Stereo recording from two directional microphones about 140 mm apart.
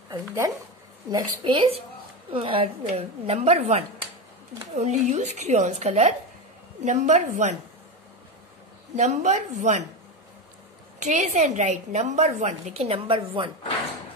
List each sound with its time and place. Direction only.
0.2 s speech: 20° right (ahead or behind)
1.1 s a woman's voice: 30° right (ahead or behind); by 7.2 s 55° right (ahead or behind)
8.9 s a woman's voice: 55° right (ahead or behind)
11.0 s a woman's voice: 60° right (ahead or behind); by 13.5 s 40° right (ahead or behind)